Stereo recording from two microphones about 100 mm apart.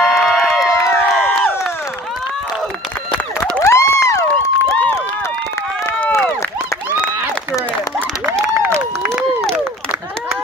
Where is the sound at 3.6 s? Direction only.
30° left (ahead or behind).